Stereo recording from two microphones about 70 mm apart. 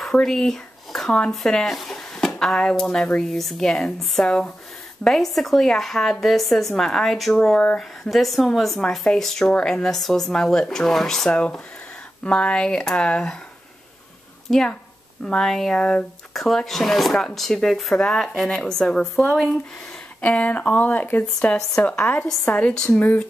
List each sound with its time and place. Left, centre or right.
0.1 s speech: centre
11.2 s speech: centre
14.5 s speech: centre
20.2 s speech: centre